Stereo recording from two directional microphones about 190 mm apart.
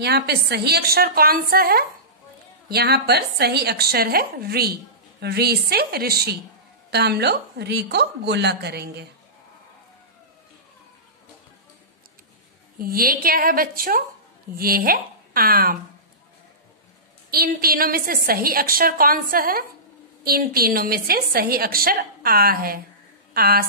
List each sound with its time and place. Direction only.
0.0 s a woman's voice: 60° right (ahead or behind)
12.7 s a woman's voice: 50° right (ahead or behind)
17.3 s a woman's voice: 50° right (ahead or behind)